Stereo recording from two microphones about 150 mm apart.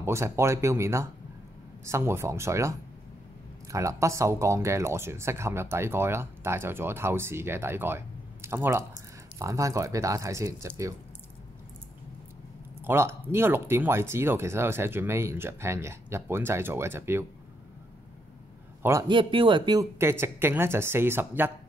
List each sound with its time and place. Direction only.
0.0 s speech: 15° right (ahead or behind)
3.7 s speech: 20° right (ahead or behind)
12.8 s speech: 15° right (ahead or behind)
18.8 s a man's voice: 20° right (ahead or behind)
19.0 s speech: 30° right (ahead or behind)
20.0 s speech: 15° right (ahead or behind)